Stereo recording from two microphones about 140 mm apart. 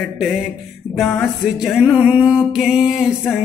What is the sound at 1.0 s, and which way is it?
Music, centre (ahead or behind).